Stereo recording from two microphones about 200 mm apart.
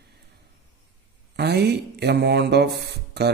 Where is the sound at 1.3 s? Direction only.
55° right (ahead or behind).